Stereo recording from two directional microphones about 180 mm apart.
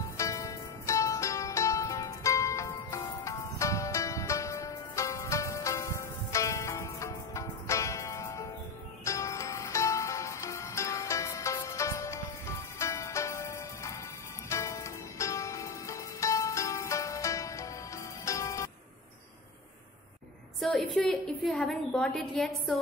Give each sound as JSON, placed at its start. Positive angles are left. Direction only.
{"t": 0.2, "sound": "music", "side_deg": 15}
{"t": 20.6, "sound": "a woman's voice", "side_deg": 0}